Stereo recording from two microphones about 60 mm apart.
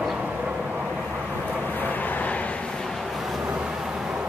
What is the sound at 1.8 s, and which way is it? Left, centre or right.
Vehicle, left.